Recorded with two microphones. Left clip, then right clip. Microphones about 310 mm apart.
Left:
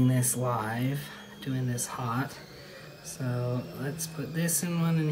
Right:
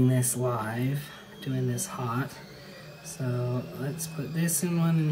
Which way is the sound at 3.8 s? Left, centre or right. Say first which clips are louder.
Even; centre.